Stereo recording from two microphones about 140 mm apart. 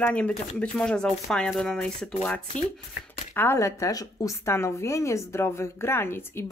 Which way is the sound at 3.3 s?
15° left (ahead or behind).